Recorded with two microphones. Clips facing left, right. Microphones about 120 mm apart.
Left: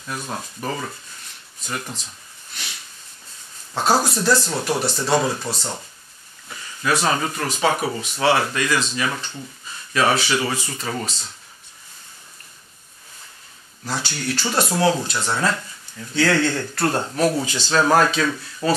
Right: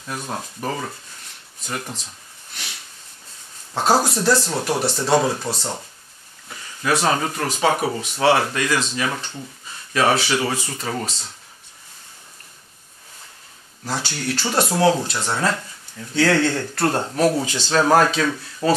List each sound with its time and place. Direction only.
0.0 s speech: 30° right (ahead or behind)
2.5 s a sound: 55° right (ahead or behind)
3.7 s speech: 30° right (ahead or behind)
4.5 s speech: 40° right (ahead or behind)
4.8 s speech: 30° right (ahead or behind)
6.5 s a sound: 40° right (ahead or behind)
7.0 s speech: 40° right (ahead or behind)
9.7 s a sound: 45° right (ahead or behind)
10.2 s speech: 45° right (ahead or behind)
14.0 s speech: 60° right (ahead or behind)
14.7 s speech: 35° right (ahead or behind)
17.5 s speech: 60° right (ahead or behind)
17.7 s speech: 40° right (ahead or behind)